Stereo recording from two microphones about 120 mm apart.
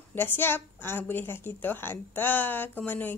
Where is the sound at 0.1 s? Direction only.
20° left (ahead or behind).